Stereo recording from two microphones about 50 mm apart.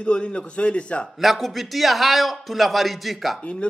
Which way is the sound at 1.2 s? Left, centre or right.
Centre.